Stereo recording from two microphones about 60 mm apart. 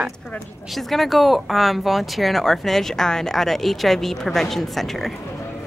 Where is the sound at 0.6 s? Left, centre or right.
Centre.